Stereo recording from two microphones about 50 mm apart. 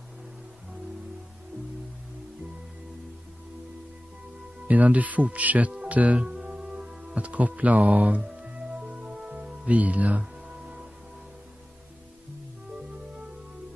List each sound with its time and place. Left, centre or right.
4.6 s speech: right
6.2 s music: centre
8.5 s music: centre
10.5 s music: centre